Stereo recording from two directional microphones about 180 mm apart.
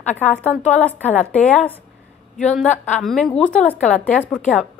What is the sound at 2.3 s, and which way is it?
Speech, 40° left (ahead or behind).